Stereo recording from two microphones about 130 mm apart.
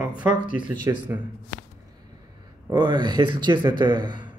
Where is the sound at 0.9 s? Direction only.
25° right (ahead or behind).